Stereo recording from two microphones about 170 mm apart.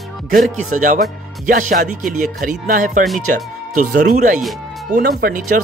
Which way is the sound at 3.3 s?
50° right (ahead or behind).